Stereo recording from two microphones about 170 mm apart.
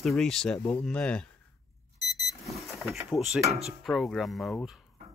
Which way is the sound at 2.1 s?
Centre (ahead or behind).